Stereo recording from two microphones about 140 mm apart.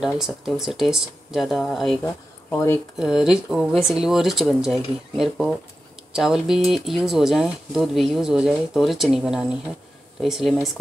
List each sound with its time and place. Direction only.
0.0 s speech: 5° right (ahead or behind)
2.5 s speech: 20° left (ahead or behind)
3.0 s speech: 5° right (ahead or behind)